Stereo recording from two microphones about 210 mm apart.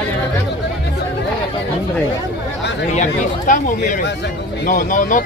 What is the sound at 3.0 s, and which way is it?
Speech, 40° left (ahead or behind).